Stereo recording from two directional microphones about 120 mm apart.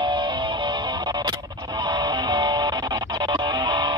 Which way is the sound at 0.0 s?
40° right (ahead or behind).